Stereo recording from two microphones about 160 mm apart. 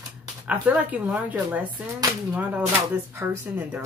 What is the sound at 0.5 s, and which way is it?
Speech, 10° right (ahead or behind).